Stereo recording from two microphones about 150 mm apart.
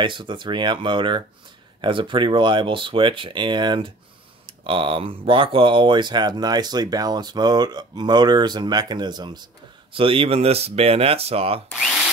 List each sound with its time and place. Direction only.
0.0 s speech: 30° right (ahead or behind)